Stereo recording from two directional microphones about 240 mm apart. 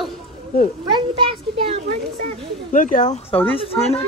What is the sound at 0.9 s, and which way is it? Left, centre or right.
A child's voice, right.